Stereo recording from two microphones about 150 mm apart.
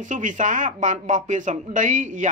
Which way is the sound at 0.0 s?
55° right (ahead or behind).